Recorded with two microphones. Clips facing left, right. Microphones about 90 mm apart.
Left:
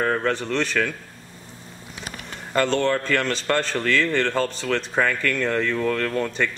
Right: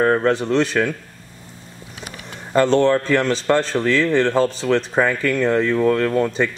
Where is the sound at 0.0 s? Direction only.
20° right (ahead or behind).